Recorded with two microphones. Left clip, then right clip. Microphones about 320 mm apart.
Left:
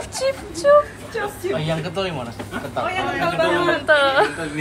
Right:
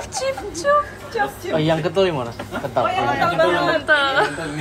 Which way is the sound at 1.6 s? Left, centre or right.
Right.